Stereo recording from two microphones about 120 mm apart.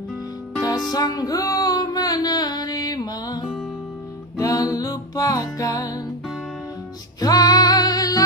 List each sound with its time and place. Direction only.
0.6 s music: 30° left (ahead or behind)
7.2 s music: 30° left (ahead or behind)